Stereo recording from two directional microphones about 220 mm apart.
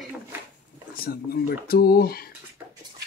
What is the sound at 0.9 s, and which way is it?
Speech, 45° left (ahead or behind).